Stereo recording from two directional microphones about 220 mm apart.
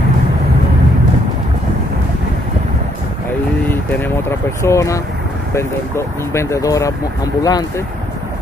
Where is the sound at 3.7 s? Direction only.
10° left (ahead or behind).